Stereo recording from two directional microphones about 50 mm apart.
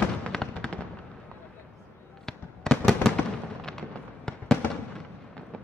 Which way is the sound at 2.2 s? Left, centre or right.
Centre.